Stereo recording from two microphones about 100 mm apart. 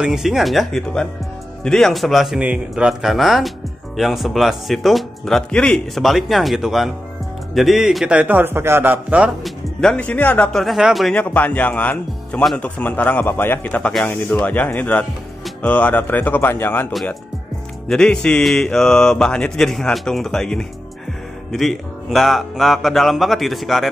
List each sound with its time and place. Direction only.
0.0 s a man's voice: 5° right (ahead or behind)
9.4 s speech: 5° left (ahead or behind)
10.5 s speech: centre (ahead or behind)
11.1 s a man's voice: 15° left (ahead or behind)
17.8 s speech: 5° left (ahead or behind)